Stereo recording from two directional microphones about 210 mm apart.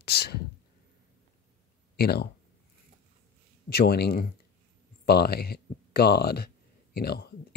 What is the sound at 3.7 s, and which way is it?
Speech, 50° left (ahead or behind).